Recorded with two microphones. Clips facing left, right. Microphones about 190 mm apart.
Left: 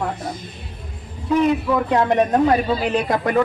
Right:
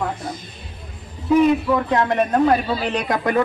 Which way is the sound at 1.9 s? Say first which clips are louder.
Left 4 dB; 15° left (ahead or behind).